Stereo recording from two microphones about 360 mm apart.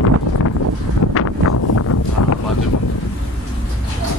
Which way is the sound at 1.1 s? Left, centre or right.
Left.